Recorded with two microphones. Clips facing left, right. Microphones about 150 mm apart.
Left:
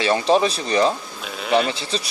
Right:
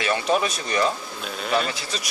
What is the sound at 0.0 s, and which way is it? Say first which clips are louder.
Speech: left 5 dB; 30° left (ahead or behind).